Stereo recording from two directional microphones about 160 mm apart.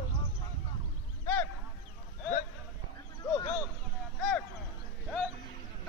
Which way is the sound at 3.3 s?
20° left (ahead or behind).